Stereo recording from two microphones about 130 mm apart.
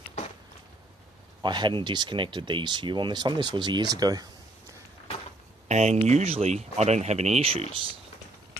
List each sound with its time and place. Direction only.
1.4 s speech: 35° right (ahead or behind)
5.7 s speech: 60° right (ahead or behind)